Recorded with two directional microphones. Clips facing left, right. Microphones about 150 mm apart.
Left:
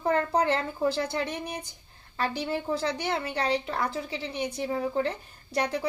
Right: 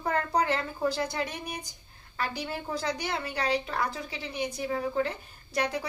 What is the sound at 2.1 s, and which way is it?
A woman's voice, 25° left (ahead or behind).